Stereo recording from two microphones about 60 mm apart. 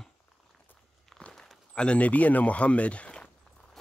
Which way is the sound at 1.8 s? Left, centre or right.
Left.